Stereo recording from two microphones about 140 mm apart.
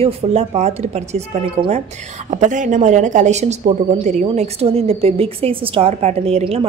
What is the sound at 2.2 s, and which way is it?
A woman's voice, 65° right (ahead or behind).